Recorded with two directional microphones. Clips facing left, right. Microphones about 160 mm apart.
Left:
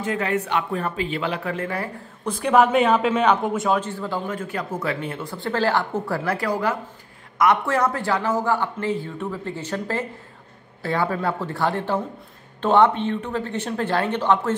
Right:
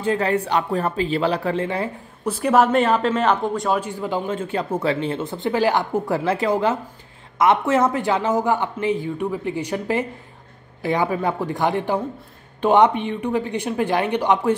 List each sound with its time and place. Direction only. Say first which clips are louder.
0.0 s speech: right 3 dB; 35° right (ahead or behind)
2.2 s speech: right 1 dB; 5° right (ahead or behind)
3.8 s speech: right 3 dB; 15° right (ahead or behind)